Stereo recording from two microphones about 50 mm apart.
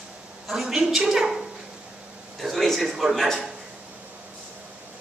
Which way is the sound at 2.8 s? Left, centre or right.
Centre.